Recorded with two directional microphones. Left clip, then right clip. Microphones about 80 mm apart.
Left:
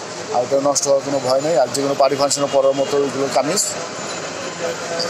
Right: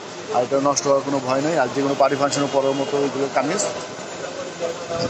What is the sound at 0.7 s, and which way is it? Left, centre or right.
Speech, centre.